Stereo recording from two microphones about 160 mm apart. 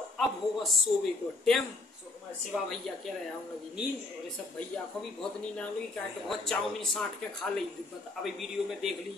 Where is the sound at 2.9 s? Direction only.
Centre (ahead or behind).